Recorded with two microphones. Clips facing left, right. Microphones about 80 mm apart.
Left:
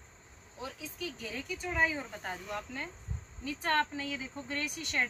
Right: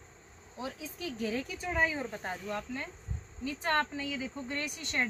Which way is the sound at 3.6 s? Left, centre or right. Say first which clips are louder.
Even; centre.